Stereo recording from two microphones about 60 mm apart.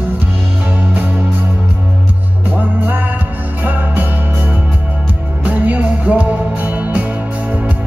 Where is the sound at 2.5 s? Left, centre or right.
Right.